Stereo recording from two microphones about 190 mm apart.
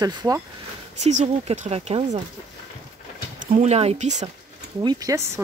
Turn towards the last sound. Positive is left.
turn(degrees=-15)  # may be behind; listen again after turning